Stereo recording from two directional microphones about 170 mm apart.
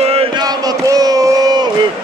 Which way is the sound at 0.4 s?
25° right (ahead or behind).